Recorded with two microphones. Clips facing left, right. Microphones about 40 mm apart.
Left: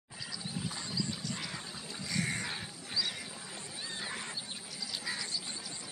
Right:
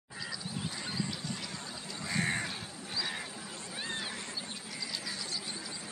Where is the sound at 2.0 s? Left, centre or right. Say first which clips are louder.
Right 3 dB; right.